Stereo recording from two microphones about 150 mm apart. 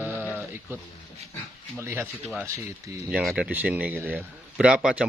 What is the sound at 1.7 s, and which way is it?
Speech, 15° right (ahead or behind).